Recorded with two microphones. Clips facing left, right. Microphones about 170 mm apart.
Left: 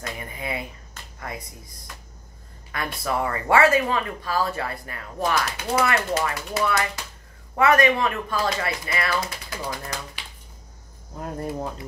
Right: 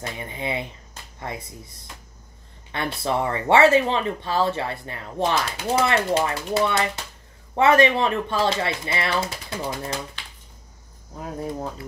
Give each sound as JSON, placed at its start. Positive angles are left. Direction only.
{"t": 0.0, "sound": "speech", "side_deg": -25}
{"t": 2.7, "sound": "speech", "side_deg": -25}
{"t": 11.1, "sound": "speech", "side_deg": 0}